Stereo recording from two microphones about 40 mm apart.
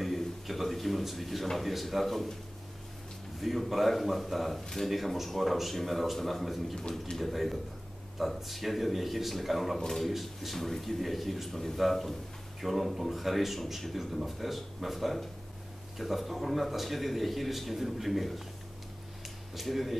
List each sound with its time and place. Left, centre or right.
0.5 s a man's voice: centre
3.3 s a man's voice: centre
6.7 s a man's voice: centre
7.2 s a man's voice: centre
9.8 s a man's voice: centre
10.0 s a man's voice: centre
19.5 s a man's voice: centre